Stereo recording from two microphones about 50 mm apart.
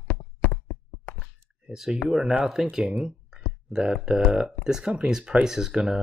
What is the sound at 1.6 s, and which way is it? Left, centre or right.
Speech, centre.